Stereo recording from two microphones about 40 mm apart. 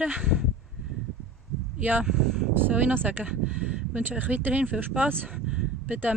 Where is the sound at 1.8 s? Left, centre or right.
Right.